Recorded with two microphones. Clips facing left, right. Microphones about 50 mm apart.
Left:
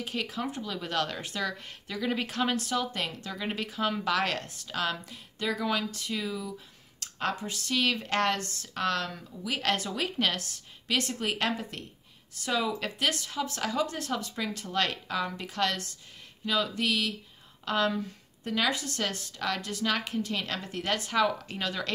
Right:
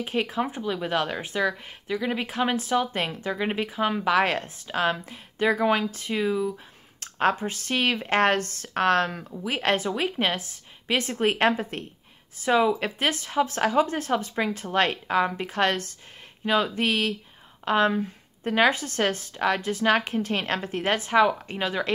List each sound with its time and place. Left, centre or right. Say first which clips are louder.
0.0 s speech: right 7 dB; right
7.0 s a sound: right 8 dB; right
7.3 s speech: right 4 dB; right
9.4 s speech: right 5 dB; right